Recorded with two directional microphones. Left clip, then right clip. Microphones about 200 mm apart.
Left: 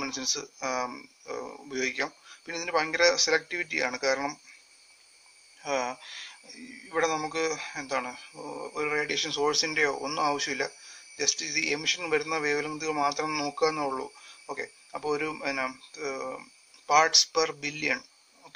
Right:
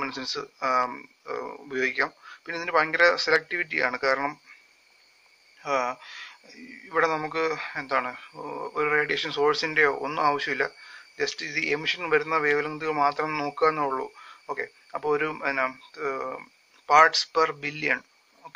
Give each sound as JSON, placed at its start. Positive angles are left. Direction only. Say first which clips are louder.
{"t": 0.0, "sound": "speech", "louder": "right 1 dB", "side_deg": 30}
{"t": 5.6, "sound": "speech", "louder": "right 4 dB", "side_deg": 40}
{"t": 8.4, "sound": "speech", "louder": "right 5 dB", "side_deg": 15}